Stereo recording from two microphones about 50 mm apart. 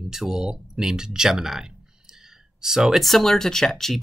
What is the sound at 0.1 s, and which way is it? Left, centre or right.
Speech, centre.